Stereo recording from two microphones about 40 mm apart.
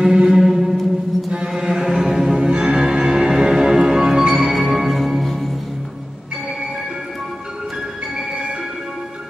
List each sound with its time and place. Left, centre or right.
0.0 s music: centre
0.3 s music: centre
1.5 s music: centre